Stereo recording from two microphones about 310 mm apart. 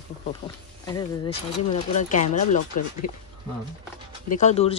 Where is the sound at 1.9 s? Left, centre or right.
Left.